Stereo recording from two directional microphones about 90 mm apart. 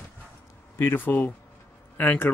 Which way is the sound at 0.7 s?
25° left (ahead or behind).